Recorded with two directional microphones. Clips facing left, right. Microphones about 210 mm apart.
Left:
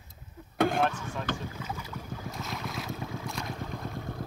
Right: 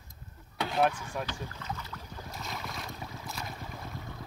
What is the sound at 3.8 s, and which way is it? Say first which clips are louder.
Vehicle: left 6 dB; 50° left (ahead or behind).